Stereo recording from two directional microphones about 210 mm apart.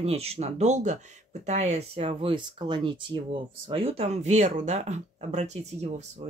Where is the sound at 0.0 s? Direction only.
30° right (ahead or behind).